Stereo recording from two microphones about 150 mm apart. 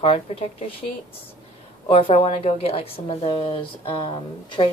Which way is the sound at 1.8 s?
40° left (ahead or behind).